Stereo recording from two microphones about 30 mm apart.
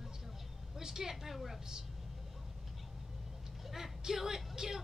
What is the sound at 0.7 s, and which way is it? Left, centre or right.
Speech, centre.